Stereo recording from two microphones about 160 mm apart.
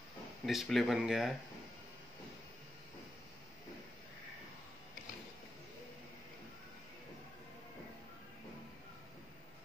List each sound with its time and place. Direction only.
0.5 s speech: centre (ahead or behind)